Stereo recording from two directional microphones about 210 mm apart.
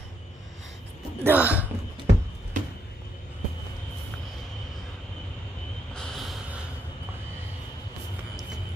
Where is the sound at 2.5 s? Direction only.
40° right (ahead or behind).